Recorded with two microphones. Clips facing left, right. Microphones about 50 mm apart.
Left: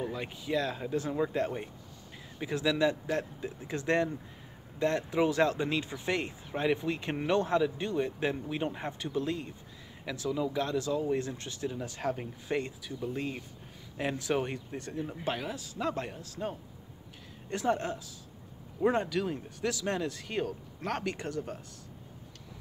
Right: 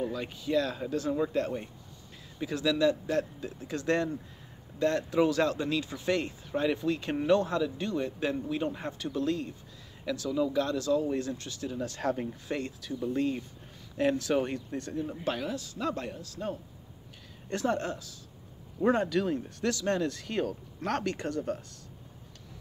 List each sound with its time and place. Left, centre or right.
0.0 s a man's voice: centre
12.0 s a man's voice: centre
12.4 s speech: left
13.0 s a man's voice: centre
17.5 s a man's voice: centre